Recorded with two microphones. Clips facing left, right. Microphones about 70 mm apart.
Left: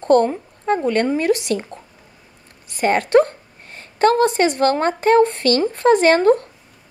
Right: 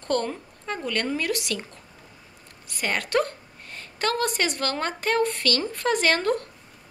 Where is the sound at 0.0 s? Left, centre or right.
Left.